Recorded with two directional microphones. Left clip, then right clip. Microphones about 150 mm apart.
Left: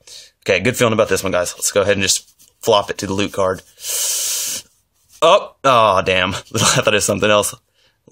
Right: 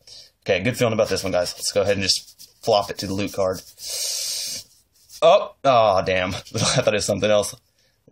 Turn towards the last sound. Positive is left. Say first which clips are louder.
# left 4 dB
turn(degrees=50)  # may be behind; listen again after turning